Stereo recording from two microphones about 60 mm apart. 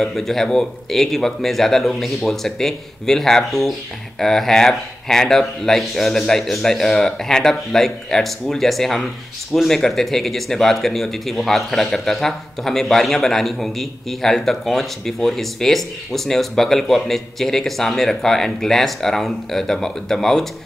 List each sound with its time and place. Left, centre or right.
0.0 s speech: centre